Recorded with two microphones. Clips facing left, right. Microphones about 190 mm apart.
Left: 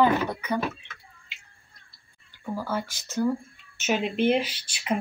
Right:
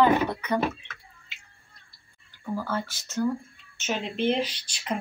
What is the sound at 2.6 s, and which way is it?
Speech, 10° left (ahead or behind).